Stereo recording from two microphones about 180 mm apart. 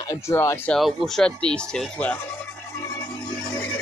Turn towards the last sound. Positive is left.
turn(degrees=20)  # may be behind; listen again after turning